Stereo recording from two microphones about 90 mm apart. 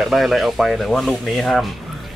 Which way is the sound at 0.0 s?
Centre (ahead or behind).